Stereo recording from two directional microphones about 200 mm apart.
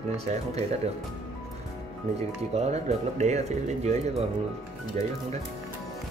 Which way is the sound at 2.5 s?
35° right (ahead or behind).